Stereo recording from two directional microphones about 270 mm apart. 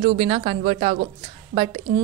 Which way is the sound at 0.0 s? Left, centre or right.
Right.